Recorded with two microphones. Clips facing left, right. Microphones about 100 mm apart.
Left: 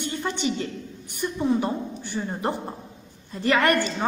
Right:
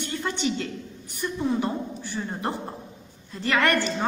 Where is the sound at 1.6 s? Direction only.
20° left (ahead or behind).